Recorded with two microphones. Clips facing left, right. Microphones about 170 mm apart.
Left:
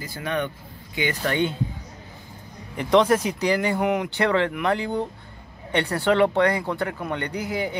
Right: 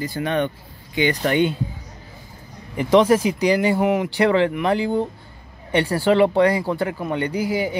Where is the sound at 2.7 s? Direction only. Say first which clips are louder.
Right 3 dB; 5° right (ahead or behind).